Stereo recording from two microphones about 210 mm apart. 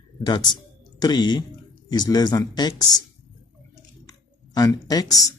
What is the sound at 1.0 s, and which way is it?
A man's voice, 20° left (ahead or behind).